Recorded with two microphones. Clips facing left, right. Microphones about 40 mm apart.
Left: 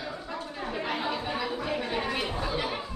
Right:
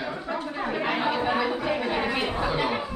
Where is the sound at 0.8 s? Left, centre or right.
Right.